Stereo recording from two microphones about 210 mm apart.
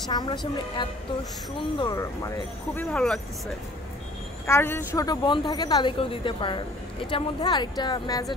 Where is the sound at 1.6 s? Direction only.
20° left (ahead or behind).